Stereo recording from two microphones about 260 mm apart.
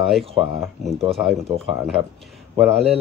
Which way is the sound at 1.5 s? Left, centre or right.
Right.